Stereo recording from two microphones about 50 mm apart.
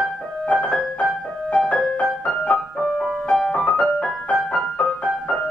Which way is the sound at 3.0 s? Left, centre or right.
Centre.